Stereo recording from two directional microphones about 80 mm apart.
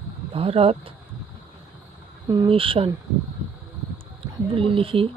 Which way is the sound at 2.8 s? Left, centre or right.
Right.